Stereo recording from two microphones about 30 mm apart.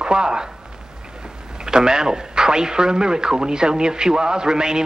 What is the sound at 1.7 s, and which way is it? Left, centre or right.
A man's voice, right.